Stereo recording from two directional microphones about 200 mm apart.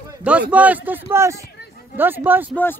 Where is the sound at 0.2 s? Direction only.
5° right (ahead or behind).